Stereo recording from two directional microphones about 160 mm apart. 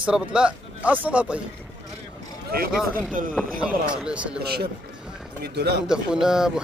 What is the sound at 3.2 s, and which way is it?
Speech, 55° right (ahead or behind).